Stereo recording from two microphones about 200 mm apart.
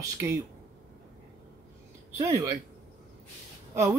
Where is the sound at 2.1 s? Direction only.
15° right (ahead or behind).